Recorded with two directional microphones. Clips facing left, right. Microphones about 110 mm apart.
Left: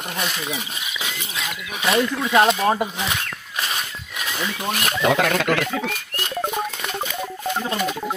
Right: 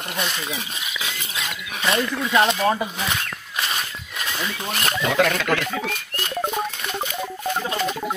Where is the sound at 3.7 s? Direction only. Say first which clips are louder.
Even; centre (ahead or behind).